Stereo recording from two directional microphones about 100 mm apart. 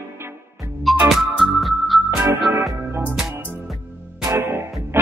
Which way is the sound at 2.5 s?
25° right (ahead or behind).